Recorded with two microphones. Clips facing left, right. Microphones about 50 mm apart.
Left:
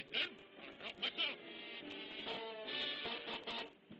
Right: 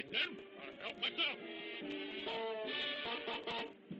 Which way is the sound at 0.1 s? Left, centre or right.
Centre.